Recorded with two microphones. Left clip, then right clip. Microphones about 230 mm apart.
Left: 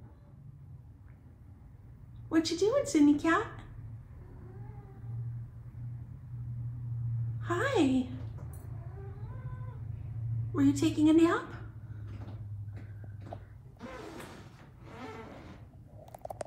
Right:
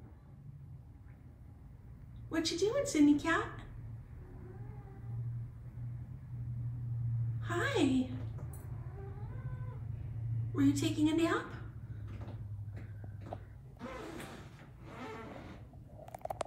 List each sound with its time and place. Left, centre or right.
2.3 s speech: centre
7.3 s a sound: centre
7.8 s a woman's voice: left
10.5 s speech: centre